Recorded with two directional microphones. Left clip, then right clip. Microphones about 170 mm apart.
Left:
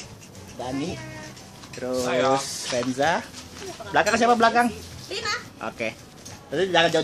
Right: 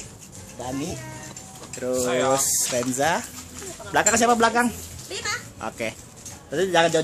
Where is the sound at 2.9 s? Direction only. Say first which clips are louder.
Left 1 dB; 30° right (ahead or behind).